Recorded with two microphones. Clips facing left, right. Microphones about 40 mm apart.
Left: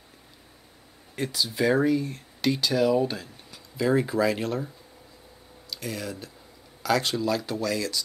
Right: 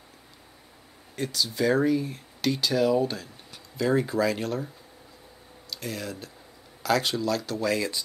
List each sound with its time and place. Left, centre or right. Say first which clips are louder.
1.1 s speech: left 1 dB; centre
1.9 s speech: left 1 dB; centre
5.7 s speech: left 1 dB; centre
7.2 s speech: left 1 dB; centre
7.6 s speech: right 1 dB; right